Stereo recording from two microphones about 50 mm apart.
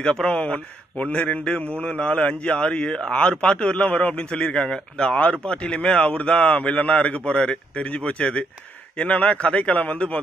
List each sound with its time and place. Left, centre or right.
0.0 s a man's voice: centre